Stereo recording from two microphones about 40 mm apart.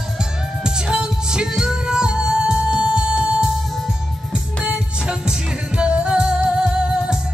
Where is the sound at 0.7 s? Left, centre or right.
Right.